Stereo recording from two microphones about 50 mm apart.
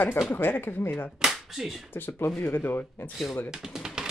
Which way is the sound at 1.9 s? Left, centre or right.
Left.